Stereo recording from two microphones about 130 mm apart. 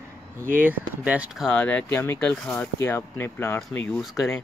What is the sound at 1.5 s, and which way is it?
Speech, 10° left (ahead or behind).